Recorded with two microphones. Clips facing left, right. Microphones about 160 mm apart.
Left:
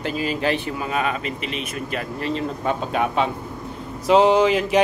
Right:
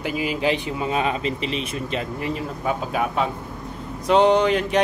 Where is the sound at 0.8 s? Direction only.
25° right (ahead or behind).